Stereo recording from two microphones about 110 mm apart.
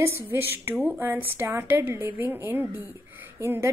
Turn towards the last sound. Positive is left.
turn(degrees=-20)  # may be behind; listen again after turning